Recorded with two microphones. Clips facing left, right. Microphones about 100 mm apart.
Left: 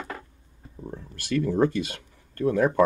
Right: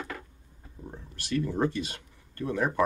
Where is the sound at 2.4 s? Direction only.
45° left (ahead or behind).